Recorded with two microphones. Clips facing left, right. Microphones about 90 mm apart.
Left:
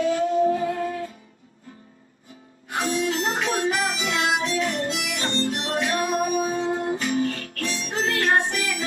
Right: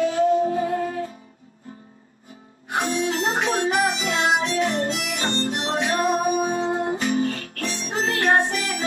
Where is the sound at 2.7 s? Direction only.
35° right (ahead or behind).